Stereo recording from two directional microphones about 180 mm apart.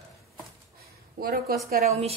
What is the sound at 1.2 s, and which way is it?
Speech, 55° right (ahead or behind).